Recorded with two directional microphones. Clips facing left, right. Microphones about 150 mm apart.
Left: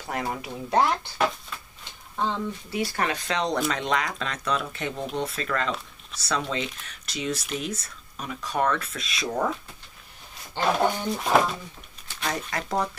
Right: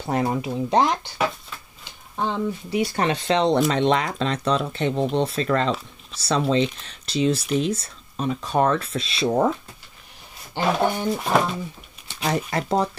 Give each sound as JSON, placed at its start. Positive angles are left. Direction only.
{"t": 0.0, "sound": "speech", "side_deg": -25}
{"t": 1.1, "sound": "a sound", "side_deg": -5}
{"t": 2.1, "sound": "speech", "side_deg": -15}
{"t": 10.6, "sound": "speech", "side_deg": -5}
{"t": 12.4, "sound": "speech", "side_deg": -30}